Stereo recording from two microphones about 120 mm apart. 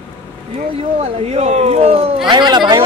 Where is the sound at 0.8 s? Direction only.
60° right (ahead or behind).